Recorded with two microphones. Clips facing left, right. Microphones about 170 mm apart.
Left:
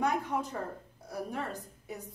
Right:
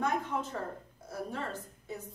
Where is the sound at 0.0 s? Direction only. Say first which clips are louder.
Left 1 dB; 15° left (ahead or behind).